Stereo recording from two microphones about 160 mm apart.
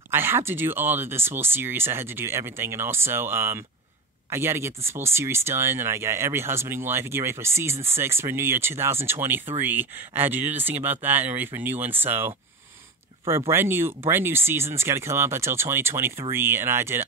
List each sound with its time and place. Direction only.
0.1 s speech: 15° right (ahead or behind)
13.5 s speech: 15° right (ahead or behind)